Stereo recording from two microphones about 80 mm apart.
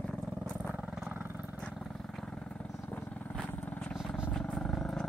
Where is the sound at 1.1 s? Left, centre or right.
Right.